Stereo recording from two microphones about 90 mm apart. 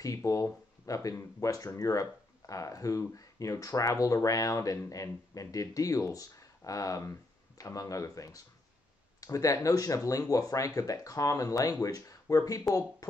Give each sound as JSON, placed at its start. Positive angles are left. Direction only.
{"t": 0.0, "sound": "speech", "side_deg": 35}